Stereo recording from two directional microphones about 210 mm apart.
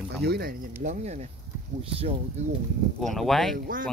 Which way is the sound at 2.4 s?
30° right (ahead or behind).